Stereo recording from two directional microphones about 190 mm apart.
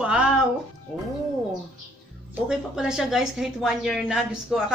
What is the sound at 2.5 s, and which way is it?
A woman's voice, 5° right (ahead or behind).